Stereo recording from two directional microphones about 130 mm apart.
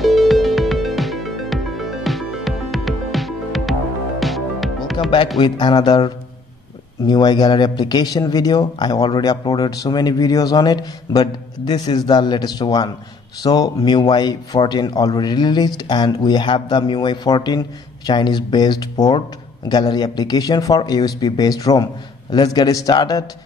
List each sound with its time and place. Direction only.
0.0 s music: centre (ahead or behind)
5.4 s speech: 35° left (ahead or behind)
7.1 s a man's voice: 35° left (ahead or behind)